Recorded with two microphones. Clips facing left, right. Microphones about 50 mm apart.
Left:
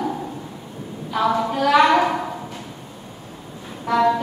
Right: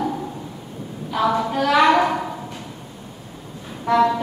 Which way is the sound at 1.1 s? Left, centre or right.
Centre.